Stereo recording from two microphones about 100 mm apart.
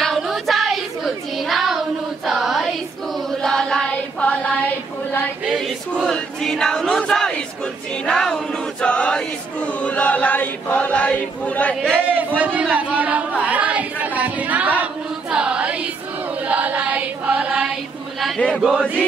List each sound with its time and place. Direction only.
0.0 s child singing: centre (ahead or behind)
3.3 s a sound: 5° left (ahead or behind)
5.4 s choir: 10° right (ahead or behind)
6.0 s battle cry: 5° left (ahead or behind)
8.0 s choir: 5° left (ahead or behind)
12.0 s speech: 15° right (ahead or behind)
15.3 s music: 10° right (ahead or behind)
16.4 s chant: 15° right (ahead or behind)